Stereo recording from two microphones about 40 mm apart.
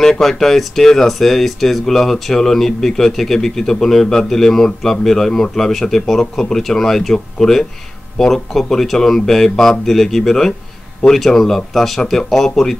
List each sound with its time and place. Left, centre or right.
0.0 s speech: centre